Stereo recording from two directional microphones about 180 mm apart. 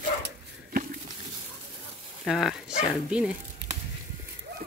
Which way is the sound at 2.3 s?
Centre (ahead or behind).